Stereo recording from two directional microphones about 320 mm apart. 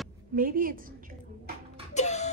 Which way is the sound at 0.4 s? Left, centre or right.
Right.